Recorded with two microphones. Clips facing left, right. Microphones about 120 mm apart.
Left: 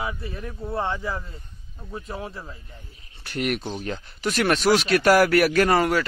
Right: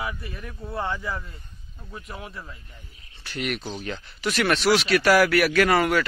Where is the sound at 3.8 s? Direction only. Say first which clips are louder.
Left 1 dB; 40° left (ahead or behind).